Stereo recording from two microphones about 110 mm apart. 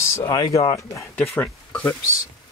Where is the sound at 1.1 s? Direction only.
10° left (ahead or behind).